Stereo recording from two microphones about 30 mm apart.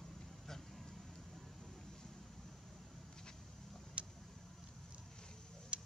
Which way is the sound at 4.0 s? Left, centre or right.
Right.